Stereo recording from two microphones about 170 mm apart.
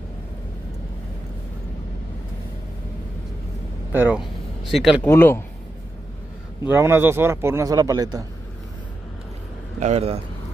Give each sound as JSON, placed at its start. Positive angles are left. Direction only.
{"t": 3.9, "sound": "speech", "side_deg": -10}
{"t": 5.0, "sound": "speech", "side_deg": 15}
{"t": 6.7, "sound": "a man's voice", "side_deg": -15}
{"t": 9.8, "sound": "speech", "side_deg": -40}